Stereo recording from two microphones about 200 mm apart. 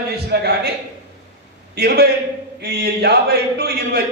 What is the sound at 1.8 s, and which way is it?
A man's voice, 55° right (ahead or behind).